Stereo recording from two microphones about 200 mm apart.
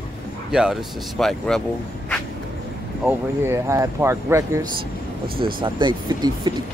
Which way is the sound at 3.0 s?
10° right (ahead or behind).